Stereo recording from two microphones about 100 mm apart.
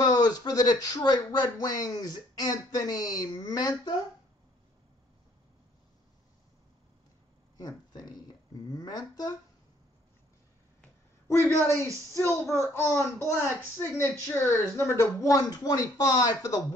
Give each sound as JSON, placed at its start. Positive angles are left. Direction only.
{"t": 0.0, "sound": "speech", "side_deg": 40}
{"t": 7.5, "sound": "a sound", "side_deg": 45}
{"t": 8.7, "sound": "speech", "side_deg": 40}
{"t": 11.2, "sound": "a woman's voice", "side_deg": 25}